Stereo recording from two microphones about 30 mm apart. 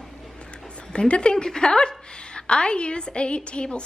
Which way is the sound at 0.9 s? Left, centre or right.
Left.